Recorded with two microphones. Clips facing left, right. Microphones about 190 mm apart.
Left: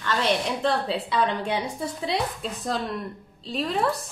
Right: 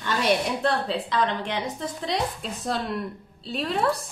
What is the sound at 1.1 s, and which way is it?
Speech, 10° left (ahead or behind).